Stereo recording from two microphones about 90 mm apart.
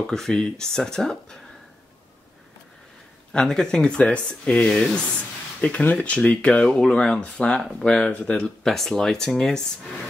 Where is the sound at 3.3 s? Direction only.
5° left (ahead or behind).